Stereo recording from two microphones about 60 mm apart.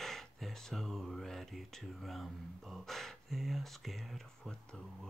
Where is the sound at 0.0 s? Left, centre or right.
Centre.